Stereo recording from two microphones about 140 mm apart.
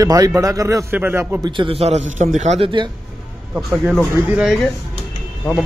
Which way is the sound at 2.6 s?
35° right (ahead or behind).